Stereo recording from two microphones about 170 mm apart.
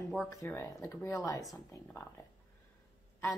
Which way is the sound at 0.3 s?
15° left (ahead or behind).